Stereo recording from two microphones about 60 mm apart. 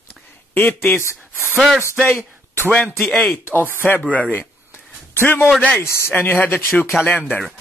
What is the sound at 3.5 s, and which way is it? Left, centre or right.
Speech, left.